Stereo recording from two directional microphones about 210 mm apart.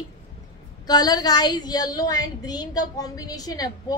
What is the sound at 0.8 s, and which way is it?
A woman's voice, 20° left (ahead or behind).